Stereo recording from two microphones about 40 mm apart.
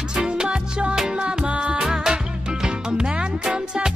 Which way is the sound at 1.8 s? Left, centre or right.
Centre.